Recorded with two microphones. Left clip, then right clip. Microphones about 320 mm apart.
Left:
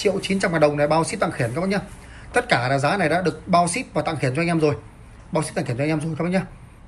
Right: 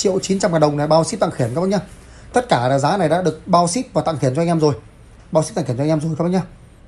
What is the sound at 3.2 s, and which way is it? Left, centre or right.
Speech, centre.